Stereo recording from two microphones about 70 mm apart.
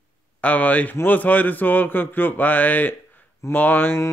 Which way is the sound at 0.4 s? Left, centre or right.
Left.